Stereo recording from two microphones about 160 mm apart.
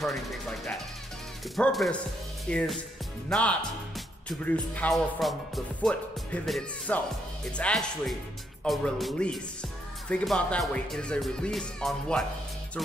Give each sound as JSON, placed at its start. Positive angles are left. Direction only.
{"t": 0.0, "sound": "speech", "side_deg": 0}